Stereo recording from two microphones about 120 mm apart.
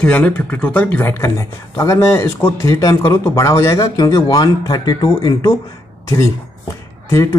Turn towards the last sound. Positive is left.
turn(degrees=25)  # may be behind; listen again after turning